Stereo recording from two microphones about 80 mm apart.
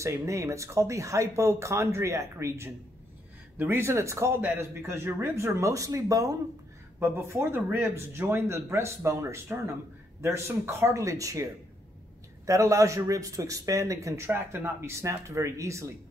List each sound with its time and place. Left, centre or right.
0.0 s speech: right
7.0 s speech: right
12.4 s speech: right
14.2 s speech: right